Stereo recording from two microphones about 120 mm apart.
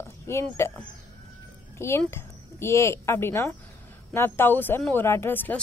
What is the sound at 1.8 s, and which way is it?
A woman's voice, 20° left (ahead or behind).